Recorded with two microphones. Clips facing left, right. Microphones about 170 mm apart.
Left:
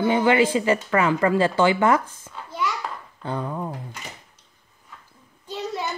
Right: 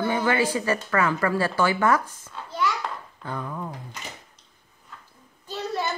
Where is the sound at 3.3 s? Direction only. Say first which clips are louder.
Left 4 dB; 30° left (ahead or behind).